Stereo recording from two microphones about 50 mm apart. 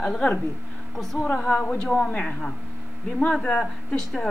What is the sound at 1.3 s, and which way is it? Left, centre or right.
Speech, centre.